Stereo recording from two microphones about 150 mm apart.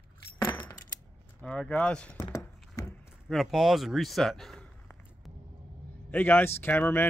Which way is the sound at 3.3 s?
Centre (ahead or behind).